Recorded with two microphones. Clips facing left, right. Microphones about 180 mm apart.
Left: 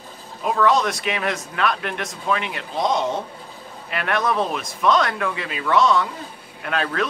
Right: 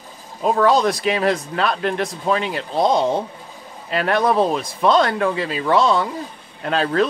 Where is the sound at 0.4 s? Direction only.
35° right (ahead or behind).